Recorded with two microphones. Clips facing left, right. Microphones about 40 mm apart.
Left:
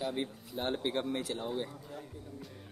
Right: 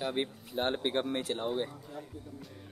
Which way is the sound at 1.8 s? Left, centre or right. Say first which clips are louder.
Right 1 dB; centre.